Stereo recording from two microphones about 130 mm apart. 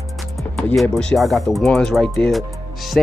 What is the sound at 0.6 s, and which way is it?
Speech, 5° left (ahead or behind).